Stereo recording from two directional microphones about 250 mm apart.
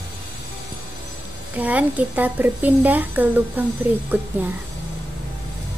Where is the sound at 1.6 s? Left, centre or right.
Centre.